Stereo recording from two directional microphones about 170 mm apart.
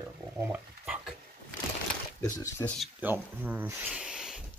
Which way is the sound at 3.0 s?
10° right (ahead or behind).